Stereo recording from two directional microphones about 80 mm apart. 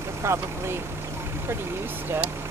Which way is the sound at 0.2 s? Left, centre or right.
Right.